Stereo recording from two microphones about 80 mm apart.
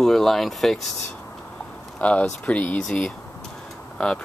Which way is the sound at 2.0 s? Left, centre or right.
Centre.